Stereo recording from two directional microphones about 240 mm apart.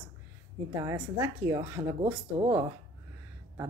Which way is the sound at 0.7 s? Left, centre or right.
Centre.